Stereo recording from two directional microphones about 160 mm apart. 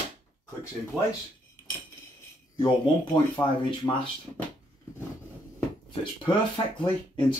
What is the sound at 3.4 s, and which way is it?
Speech, 30° left (ahead or behind).